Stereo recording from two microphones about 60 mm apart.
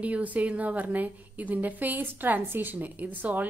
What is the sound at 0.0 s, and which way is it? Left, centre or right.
A woman's voice, right.